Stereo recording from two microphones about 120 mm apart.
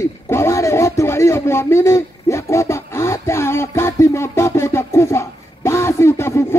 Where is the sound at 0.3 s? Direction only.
20° left (ahead or behind).